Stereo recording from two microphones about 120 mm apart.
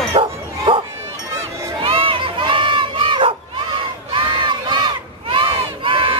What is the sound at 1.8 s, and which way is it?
Crowd, 45° right (ahead or behind).